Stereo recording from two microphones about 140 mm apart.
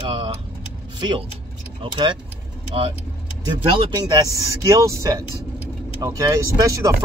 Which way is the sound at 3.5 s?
30° right (ahead or behind).